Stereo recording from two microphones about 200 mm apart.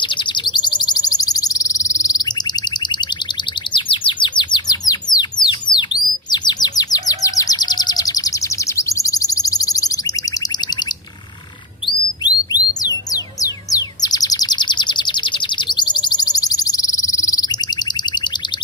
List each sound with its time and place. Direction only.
0.0 s bird: 25° left (ahead or behind)
3.7 s bird: 25° left (ahead or behind)
8.7 s alarm: 15° left (ahead or behind)
12.2 s music: 20° left (ahead or behind)